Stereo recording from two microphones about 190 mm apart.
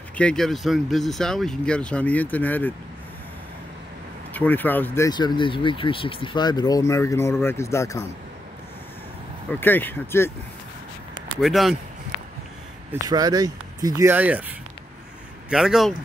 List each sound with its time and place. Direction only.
0.2 s speech: 5° left (ahead or behind)
4.3 s speech: 10° left (ahead or behind)
9.5 s speech: 10° left (ahead or behind)
11.4 s speech: centre (ahead or behind)
13.1 s speech: 20° right (ahead or behind)
15.5 s speech: centre (ahead or behind)